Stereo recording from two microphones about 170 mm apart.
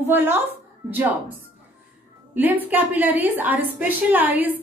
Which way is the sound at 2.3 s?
10° right (ahead or behind).